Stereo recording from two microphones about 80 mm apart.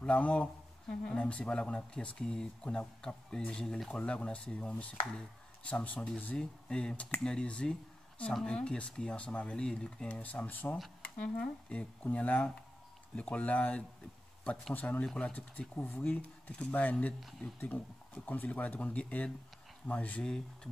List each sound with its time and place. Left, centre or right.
0.0 s speech: centre